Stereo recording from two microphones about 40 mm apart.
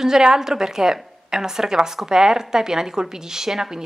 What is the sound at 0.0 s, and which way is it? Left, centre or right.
A woman's voice, centre.